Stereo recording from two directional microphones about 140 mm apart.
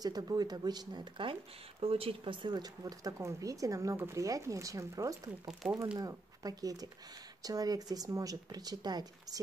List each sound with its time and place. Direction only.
0.0 s speech: 30° right (ahead or behind)
5.5 s speech: 5° right (ahead or behind)
5.9 s speech: 25° right (ahead or behind)